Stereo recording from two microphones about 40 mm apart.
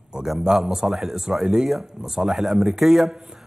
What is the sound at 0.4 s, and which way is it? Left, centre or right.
A man's voice, centre.